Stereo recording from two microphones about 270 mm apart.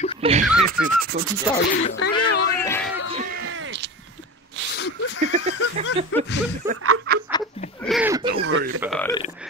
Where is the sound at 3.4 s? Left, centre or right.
Right.